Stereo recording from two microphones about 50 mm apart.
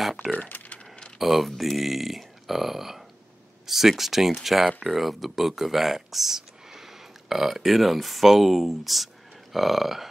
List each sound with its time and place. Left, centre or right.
0.2 s speech: left
1.1 s speech: centre